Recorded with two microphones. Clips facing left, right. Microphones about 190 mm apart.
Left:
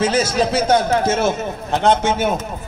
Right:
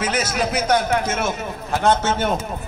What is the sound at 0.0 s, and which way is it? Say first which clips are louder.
A man's voice: left 5 dB; 30° left (ahead or behind).